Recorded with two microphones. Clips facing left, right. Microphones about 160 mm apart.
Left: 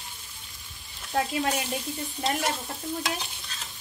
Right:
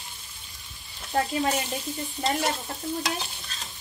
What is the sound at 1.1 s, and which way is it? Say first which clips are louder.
A woman's voice: right 1 dB; centre (ahead or behind).